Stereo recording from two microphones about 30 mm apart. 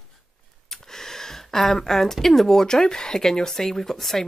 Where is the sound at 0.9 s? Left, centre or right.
Centre.